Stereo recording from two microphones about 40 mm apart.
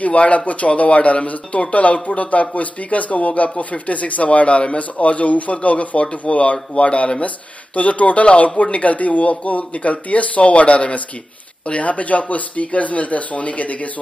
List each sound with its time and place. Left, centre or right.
0.0 s speech: left